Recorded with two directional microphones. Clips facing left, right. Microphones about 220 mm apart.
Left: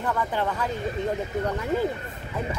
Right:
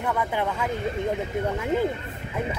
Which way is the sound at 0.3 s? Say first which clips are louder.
Even; 15° right (ahead or behind).